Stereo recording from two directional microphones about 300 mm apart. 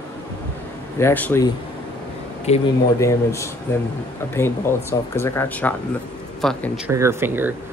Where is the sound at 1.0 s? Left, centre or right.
Centre.